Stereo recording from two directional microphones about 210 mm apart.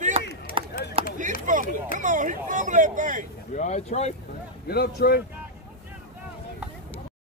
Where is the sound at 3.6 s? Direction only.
30° left (ahead or behind).